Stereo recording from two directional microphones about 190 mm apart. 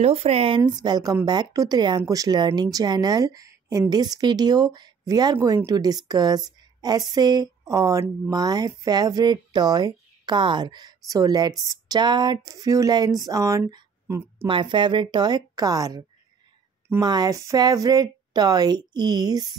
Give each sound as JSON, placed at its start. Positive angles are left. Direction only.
{"t": 0.0, "sound": "speech", "side_deg": -30}
{"t": 14.5, "sound": "speech", "side_deg": -25}